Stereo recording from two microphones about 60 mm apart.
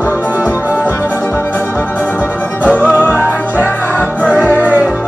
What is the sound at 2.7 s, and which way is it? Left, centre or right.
Music, left.